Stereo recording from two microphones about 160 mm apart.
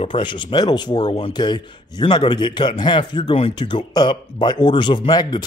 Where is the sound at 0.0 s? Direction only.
30° left (ahead or behind).